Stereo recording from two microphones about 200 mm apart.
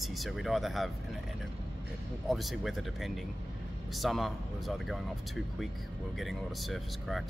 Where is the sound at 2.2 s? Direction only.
Centre (ahead or behind).